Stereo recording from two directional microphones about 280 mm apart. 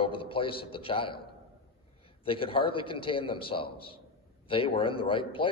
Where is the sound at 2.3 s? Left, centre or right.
Centre.